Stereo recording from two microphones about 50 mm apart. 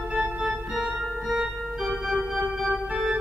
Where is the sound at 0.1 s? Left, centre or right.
Right.